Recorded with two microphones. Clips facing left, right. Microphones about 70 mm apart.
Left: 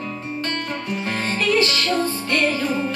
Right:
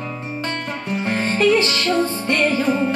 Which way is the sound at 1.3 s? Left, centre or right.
Centre.